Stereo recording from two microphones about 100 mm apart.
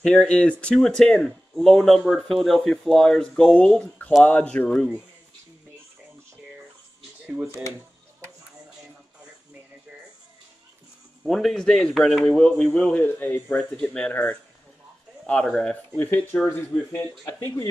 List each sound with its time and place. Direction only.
0.0 s speech: 10° left (ahead or behind)
11.2 s speech: centre (ahead or behind)
13.0 s speech: 20° left (ahead or behind)
15.2 s speech: 5° left (ahead or behind)
16.0 s speech: 20° left (ahead or behind)